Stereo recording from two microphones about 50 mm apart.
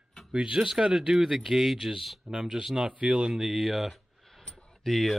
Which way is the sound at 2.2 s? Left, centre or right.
Centre.